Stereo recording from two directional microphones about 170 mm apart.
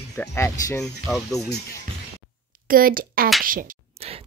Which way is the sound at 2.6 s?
55° right (ahead or behind).